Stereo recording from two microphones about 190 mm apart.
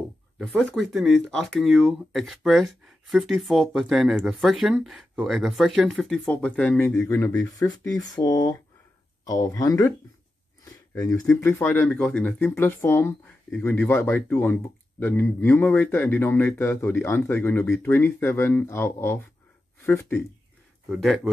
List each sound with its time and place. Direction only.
0.4 s speech: centre (ahead or behind)
20.9 s speech: centre (ahead or behind)